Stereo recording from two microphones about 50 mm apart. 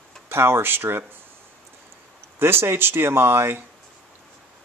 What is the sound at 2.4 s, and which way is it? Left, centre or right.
Speech, right.